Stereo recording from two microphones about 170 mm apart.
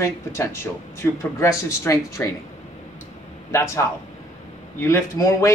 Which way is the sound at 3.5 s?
15° left (ahead or behind).